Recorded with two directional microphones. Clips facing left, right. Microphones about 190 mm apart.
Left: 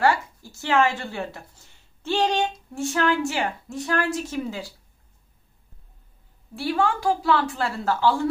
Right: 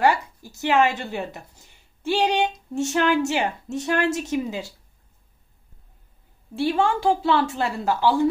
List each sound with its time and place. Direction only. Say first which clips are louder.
0.0 s a woman's voice: right 1 dB; 15° right (ahead or behind)
6.5 s a woman's voice: right 2 dB; 25° right (ahead or behind)